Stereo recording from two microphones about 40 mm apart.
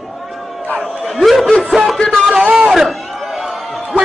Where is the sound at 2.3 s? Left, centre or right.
Right.